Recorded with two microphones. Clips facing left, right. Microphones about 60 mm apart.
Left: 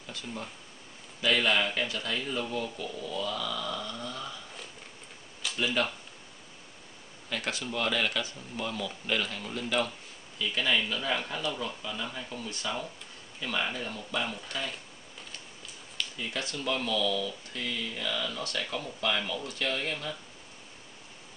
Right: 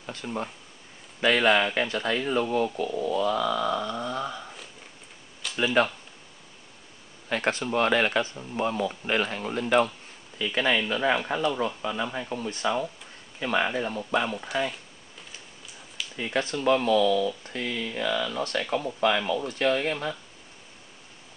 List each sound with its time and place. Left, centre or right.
0.0 s speech: right
5.6 s speech: right
7.2 s speech: right
16.2 s speech: right
18.6 s speech: centre
18.9 s speech: right
19.1 s speech: right